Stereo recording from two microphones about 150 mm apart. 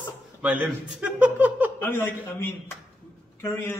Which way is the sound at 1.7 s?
15° left (ahead or behind).